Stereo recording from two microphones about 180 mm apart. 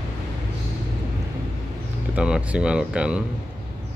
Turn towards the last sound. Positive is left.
turn(degrees=-5)  # may be behind; listen again after turning